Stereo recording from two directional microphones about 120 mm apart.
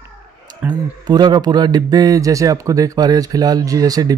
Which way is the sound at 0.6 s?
10° right (ahead or behind).